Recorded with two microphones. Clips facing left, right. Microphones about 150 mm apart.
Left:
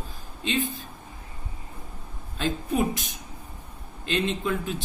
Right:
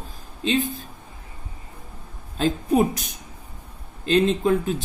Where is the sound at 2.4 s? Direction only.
40° right (ahead or behind).